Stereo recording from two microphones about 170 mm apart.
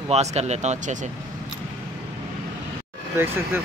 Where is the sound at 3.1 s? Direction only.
15° right (ahead or behind).